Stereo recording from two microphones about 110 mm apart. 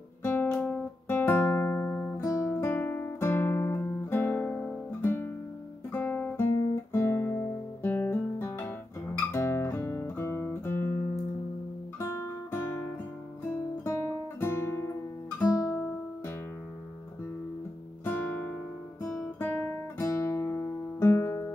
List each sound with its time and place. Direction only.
0.2 s guitar: 20° left (ahead or behind)
5.0 s music: 20° left (ahead or behind)
5.9 s guitar: 15° left (ahead or behind)
6.5 s guitar: 35° left (ahead or behind)
6.9 s guitar: 25° left (ahead or behind)
12.0 s guitar: 20° left (ahead or behind)
13.8 s guitar: 25° left (ahead or behind)
18.0 s guitar: 20° left (ahead or behind)